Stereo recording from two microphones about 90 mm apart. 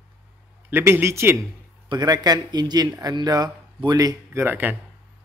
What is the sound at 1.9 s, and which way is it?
Speech, 50° right (ahead or behind).